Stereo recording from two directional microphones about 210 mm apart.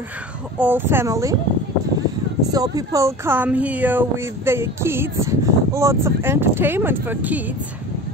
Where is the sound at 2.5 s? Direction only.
15° right (ahead or behind).